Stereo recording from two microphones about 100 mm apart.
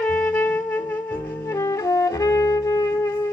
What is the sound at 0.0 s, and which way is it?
Wind instrument, 10° left (ahead or behind).